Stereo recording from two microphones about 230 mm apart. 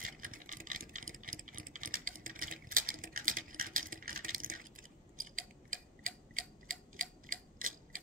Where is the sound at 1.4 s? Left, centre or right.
Right.